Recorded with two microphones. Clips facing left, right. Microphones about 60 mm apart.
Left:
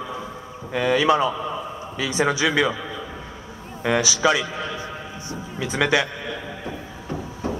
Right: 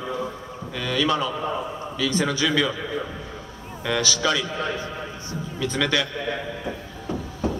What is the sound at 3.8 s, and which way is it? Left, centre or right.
A man's voice, left.